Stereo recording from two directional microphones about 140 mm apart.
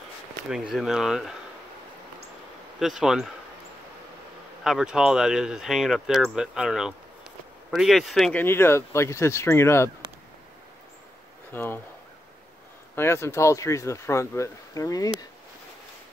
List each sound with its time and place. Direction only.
0.5 s speech: centre (ahead or behind)
2.8 s speech: 5° right (ahead or behind)
4.6 s speech: 5° right (ahead or behind)
8.4 s speech: 15° left (ahead or behind)
11.5 s speech: 15° left (ahead or behind)
12.9 s speech: 20° left (ahead or behind)